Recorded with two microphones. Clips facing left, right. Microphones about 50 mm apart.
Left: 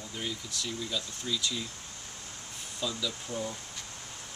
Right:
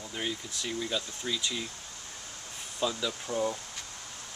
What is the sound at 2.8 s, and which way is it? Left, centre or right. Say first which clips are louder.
Speech: right 4 dB; right.